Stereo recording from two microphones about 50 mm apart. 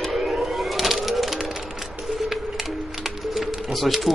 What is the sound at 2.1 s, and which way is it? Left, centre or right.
Music, centre.